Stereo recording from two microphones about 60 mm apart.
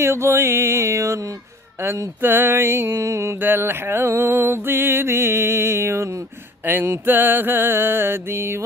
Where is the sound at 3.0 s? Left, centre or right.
Right.